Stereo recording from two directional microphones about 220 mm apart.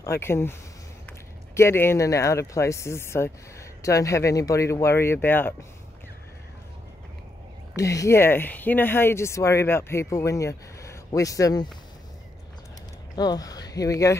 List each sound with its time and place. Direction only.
0.2 s speech: 10° left (ahead or behind)
7.7 s speech: 15° left (ahead or behind)
13.1 s speech: 20° left (ahead or behind)